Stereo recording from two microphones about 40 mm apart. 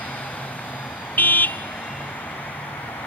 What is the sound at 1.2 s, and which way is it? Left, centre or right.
Vehicle, left.